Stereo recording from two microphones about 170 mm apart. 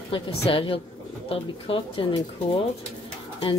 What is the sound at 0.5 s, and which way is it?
Speech, 30° left (ahead or behind).